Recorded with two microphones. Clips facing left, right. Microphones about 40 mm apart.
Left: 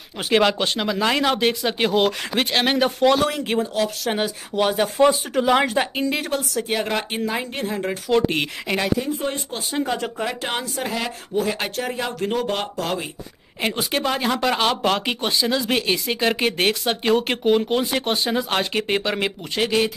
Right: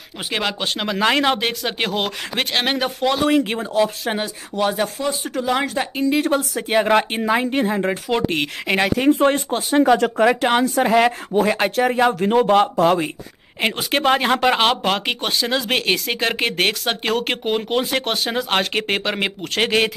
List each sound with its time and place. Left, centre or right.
0.3 s speech: centre
0.7 s speech: right
2.8 s speech: centre
3.7 s speech: centre
4.6 s speech: centre
6.3 s speech: centre
8.6 s speech: right
8.9 s speech: right
9.5 s speech: right
9.8 s speech: right
10.4 s speech: right
17.3 s speech: right
18.5 s speech: right
19.5 s speech: right